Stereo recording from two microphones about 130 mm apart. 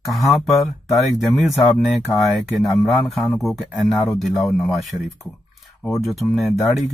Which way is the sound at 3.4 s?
Centre (ahead or behind).